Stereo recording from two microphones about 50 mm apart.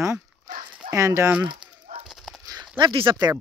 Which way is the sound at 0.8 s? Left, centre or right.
Right.